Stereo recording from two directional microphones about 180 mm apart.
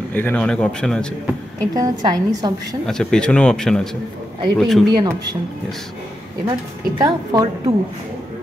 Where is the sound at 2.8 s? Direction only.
5° left (ahead or behind).